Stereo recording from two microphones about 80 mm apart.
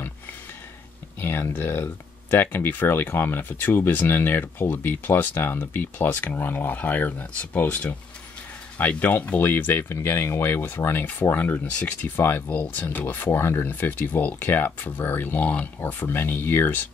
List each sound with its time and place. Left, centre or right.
1.2 s speech: left